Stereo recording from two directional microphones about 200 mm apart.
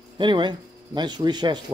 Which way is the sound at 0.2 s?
25° right (ahead or behind).